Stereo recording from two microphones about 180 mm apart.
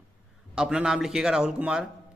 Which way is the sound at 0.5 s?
5° right (ahead or behind).